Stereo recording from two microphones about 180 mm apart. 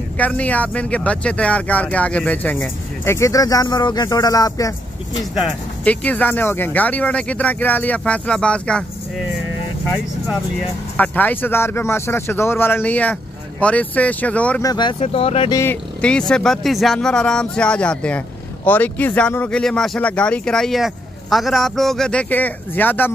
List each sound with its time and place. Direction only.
0.2 s speech: 10° left (ahead or behind)
5.3 s speech: 5° left (ahead or behind)
11.0 s speech: 10° left (ahead or behind)
14.6 s speech: 25° left (ahead or behind)
15.5 s speech: 10° left (ahead or behind)